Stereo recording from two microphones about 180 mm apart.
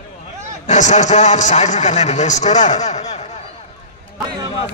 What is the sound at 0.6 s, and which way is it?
A man's voice, 40° left (ahead or behind).